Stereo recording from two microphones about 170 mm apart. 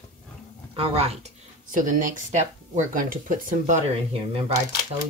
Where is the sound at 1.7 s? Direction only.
50° right (ahead or behind).